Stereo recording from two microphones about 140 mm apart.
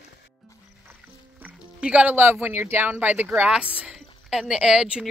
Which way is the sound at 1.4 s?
10° right (ahead or behind).